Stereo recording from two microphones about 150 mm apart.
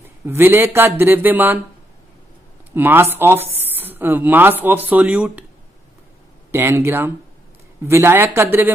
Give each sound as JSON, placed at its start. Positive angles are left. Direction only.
{"t": 0.0, "sound": "speech", "side_deg": -15}
{"t": 2.7, "sound": "speech", "side_deg": -15}
{"t": 6.5, "sound": "speech", "side_deg": -15}